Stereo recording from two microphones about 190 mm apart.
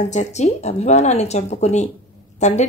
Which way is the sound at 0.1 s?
35° left (ahead or behind).